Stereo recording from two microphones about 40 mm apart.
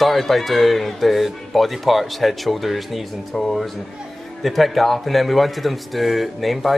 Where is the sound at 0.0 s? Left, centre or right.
Centre.